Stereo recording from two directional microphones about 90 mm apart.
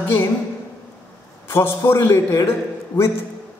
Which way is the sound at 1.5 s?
30° left (ahead or behind).